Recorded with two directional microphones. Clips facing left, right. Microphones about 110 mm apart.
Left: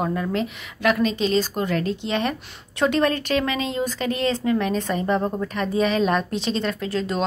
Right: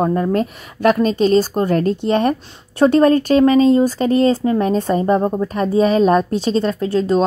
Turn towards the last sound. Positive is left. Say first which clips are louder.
# right 9 dB
turn(degrees=-35)  # may be behind; listen again after turning